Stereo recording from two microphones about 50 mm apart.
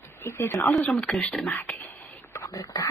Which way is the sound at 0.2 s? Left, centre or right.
Left.